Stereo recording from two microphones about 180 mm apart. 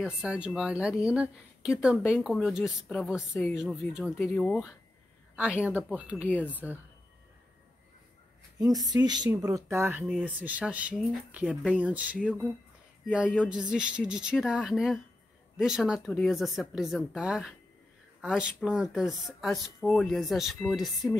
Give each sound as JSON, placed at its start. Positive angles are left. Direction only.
{"t": 0.0, "sound": "speech", "side_deg": -5}
{"t": 5.6, "sound": "speech", "side_deg": -10}
{"t": 6.2, "sound": "speech", "side_deg": 10}
{"t": 8.5, "sound": "speech", "side_deg": -20}